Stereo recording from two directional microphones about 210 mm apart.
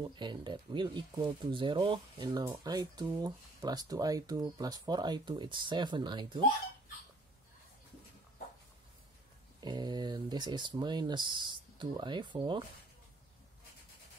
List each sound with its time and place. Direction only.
0.1 s speech: 20° right (ahead or behind)
9.6 s speech: 20° right (ahead or behind)